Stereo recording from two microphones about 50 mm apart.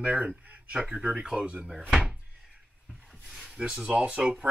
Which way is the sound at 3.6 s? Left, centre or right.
Right.